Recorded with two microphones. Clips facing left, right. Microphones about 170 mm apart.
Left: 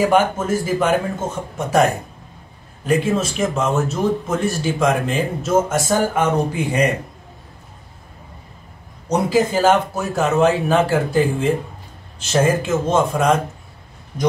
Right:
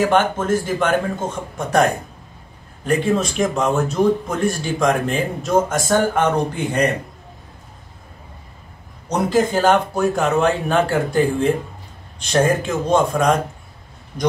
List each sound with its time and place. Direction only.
0.0 s speech: 10° left (ahead or behind)
9.1 s speech: 5° left (ahead or behind)